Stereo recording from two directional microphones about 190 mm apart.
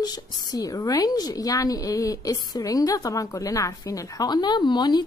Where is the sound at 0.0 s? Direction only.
20° left (ahead or behind).